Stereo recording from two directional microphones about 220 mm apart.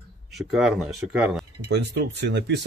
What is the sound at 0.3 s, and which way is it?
Speech, centre (ahead or behind).